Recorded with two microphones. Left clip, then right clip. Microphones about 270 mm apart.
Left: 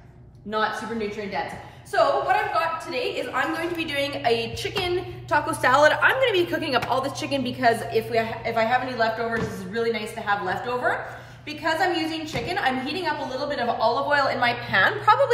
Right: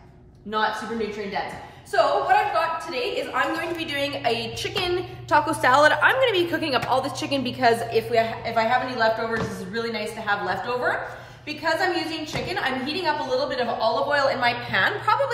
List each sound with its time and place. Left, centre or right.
0.5 s a woman's voice: centre
1.9 s a woman's voice: centre